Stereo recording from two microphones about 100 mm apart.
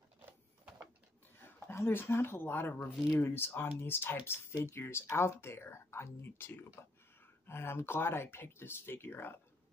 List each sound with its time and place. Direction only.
1.7 s speech: 25° left (ahead or behind)